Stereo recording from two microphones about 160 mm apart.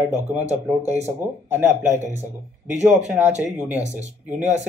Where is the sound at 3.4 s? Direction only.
10° right (ahead or behind).